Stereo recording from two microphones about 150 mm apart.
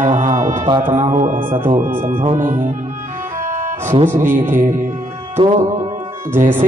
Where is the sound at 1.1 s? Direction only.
55° right (ahead or behind).